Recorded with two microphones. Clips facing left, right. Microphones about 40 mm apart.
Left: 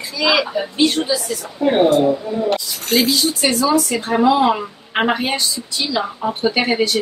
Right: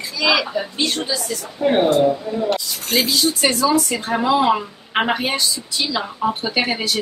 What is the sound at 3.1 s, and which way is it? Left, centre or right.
Speech, centre.